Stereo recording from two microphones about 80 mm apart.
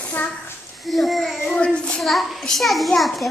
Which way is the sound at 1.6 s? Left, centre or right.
Centre.